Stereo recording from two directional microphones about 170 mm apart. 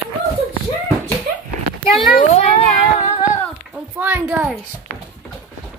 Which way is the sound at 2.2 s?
40° left (ahead or behind).